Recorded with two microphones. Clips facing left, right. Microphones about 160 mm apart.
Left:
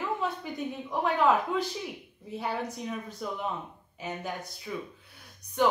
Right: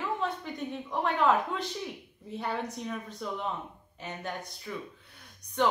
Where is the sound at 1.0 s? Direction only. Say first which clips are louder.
Left 1 dB; 5° left (ahead or behind).